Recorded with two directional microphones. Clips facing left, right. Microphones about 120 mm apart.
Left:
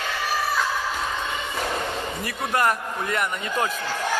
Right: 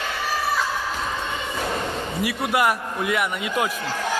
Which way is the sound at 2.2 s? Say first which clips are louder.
Right 2 dB; 10° right (ahead or behind).